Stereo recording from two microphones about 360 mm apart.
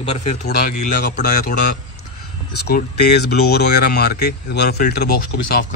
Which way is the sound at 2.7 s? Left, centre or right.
Left.